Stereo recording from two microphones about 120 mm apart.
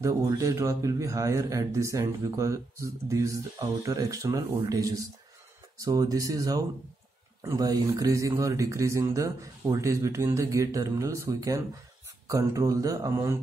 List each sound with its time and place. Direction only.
0.0 s a man's voice: 25° right (ahead or behind)